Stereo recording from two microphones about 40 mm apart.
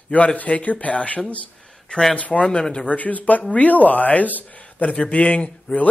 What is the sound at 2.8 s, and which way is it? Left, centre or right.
Speech, left.